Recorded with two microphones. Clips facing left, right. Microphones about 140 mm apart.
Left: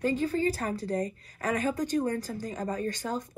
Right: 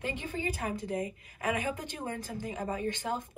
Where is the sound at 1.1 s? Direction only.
15° right (ahead or behind).